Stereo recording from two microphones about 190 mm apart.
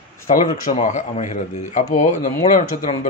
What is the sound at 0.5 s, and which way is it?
Speech, 40° left (ahead or behind).